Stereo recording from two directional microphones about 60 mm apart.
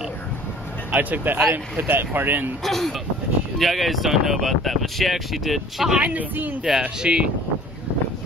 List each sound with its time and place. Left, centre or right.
0.9 s speech: right
2.6 s speech: centre
5.9 s speech: right
6.6 s speech: centre